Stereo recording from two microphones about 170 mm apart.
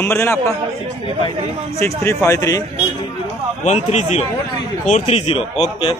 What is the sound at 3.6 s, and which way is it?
Speech, 40° left (ahead or behind).